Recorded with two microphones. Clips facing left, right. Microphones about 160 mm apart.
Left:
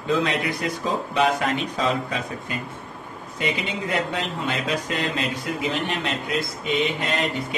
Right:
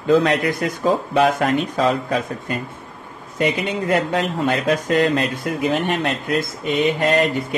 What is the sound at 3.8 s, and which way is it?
Speech, 50° right (ahead or behind).